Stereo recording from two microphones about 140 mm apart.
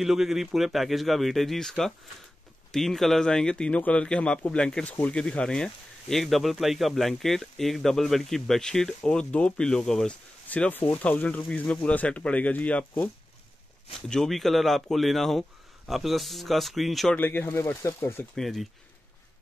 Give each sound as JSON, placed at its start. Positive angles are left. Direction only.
{"t": 0.0, "sound": "speech", "side_deg": 0}
{"t": 17.2, "sound": "speech", "side_deg": 15}
{"t": 18.3, "sound": "speech", "side_deg": 0}